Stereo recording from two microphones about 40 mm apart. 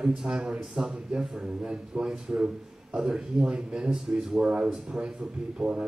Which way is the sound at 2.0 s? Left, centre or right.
Centre.